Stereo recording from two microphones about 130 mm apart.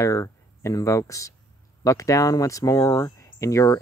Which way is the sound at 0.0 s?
25° left (ahead or behind).